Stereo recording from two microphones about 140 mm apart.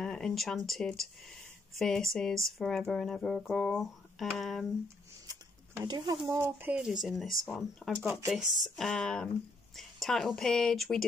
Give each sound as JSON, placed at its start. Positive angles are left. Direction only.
{"t": 0.0, "sound": "speech", "side_deg": 5}
{"t": 5.3, "sound": "speech", "side_deg": -30}
{"t": 8.0, "sound": "speech", "side_deg": -15}
{"t": 8.3, "sound": "speech", "side_deg": 0}